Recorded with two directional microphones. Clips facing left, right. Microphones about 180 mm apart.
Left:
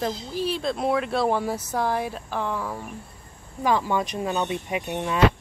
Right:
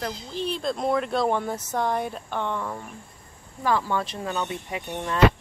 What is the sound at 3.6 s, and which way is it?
Speech, 15° left (ahead or behind).